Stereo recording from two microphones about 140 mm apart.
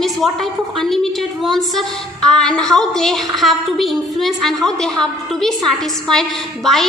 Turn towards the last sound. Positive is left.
turn(degrees=0)  # may be behind; listen again after turning